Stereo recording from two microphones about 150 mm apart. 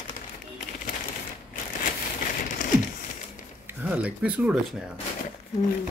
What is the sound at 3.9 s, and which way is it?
Speech, 10° right (ahead or behind).